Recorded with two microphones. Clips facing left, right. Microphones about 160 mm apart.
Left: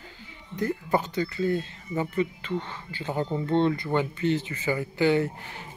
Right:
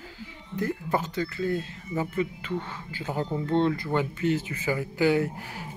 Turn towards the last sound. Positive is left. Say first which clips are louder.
# left 1 dB
turn(degrees=-5)  # may be behind; listen again after turning